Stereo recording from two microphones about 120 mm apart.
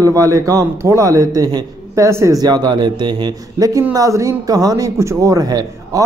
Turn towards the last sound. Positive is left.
turn(degrees=-30)  # may be behind; listen again after turning